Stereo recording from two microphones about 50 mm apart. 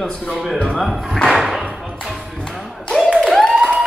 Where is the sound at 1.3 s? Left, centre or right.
Centre.